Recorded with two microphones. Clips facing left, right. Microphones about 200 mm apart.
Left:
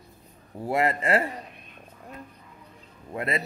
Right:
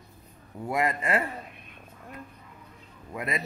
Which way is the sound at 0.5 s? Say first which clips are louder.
Left 3 dB; 30° left (ahead or behind).